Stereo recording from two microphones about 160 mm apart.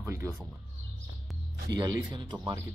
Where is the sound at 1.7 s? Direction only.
25° right (ahead or behind).